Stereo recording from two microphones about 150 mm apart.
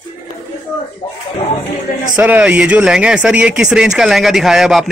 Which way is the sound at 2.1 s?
10° right (ahead or behind).